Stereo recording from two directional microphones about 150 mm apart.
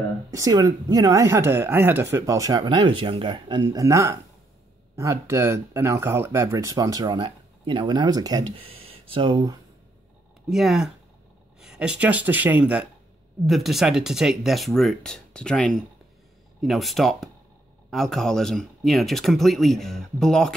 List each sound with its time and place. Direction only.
0.3 s speech: 25° right (ahead or behind)
10.5 s speech: centre (ahead or behind)